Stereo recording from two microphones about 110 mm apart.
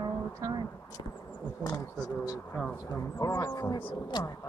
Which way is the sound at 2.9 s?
30° left (ahead or behind).